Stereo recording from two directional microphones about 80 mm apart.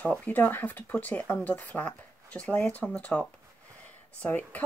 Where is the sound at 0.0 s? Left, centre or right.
Centre.